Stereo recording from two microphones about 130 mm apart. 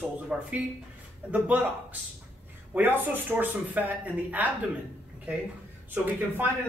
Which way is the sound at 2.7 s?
15° right (ahead or behind).